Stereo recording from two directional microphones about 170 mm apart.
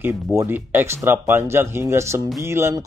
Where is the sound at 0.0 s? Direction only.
15° right (ahead or behind).